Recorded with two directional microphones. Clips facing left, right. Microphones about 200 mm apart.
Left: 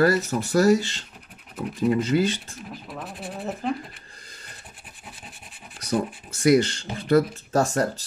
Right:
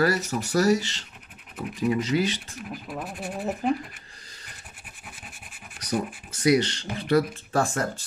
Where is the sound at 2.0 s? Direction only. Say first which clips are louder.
Left 3 dB; 55° left (ahead or behind).